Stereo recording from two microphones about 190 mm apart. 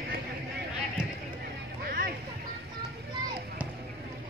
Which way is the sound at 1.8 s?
55° right (ahead or behind).